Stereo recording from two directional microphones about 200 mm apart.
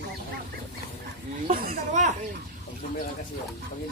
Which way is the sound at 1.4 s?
40° right (ahead or behind).